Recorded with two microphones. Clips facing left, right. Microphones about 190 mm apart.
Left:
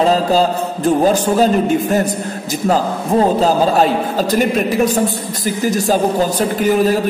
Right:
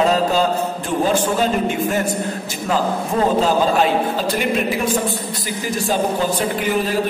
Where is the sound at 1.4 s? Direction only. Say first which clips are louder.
Left 5 dB; 40° left (ahead or behind).